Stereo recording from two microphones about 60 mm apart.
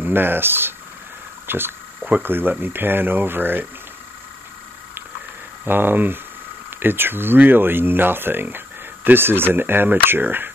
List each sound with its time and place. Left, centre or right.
0.0 s speech: right
1.5 s a sound: right
2.2 s speech: right
5.7 s speech: right